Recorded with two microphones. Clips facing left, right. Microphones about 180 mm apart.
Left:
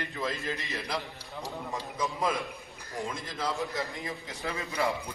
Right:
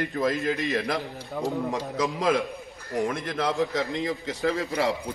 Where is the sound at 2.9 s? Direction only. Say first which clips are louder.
Right 9 dB; 65° right (ahead or behind).